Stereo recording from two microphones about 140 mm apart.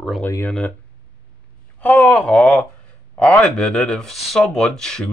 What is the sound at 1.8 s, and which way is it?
Speech, 10° left (ahead or behind).